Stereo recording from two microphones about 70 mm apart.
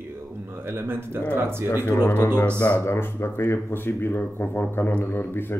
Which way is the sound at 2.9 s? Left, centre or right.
Left.